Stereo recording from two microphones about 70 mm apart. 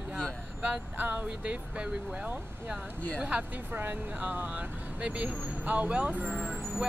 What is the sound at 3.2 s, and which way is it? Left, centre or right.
Speech, centre.